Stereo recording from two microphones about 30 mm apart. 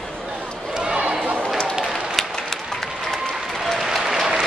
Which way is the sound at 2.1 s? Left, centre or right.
Centre.